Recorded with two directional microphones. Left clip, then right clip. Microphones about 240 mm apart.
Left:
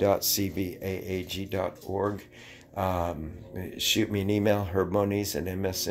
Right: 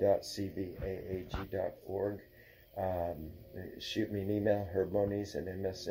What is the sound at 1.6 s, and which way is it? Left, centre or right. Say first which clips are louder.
Speech: left 6 dB; left.